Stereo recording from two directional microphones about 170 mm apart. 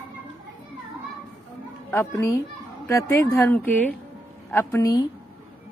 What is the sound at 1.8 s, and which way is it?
A woman's voice, 15° left (ahead or behind).